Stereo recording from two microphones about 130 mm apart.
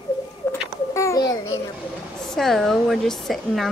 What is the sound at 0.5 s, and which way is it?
Babbling, 20° left (ahead or behind).